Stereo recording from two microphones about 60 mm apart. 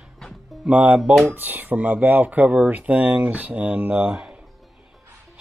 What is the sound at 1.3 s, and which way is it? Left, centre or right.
Speech, right.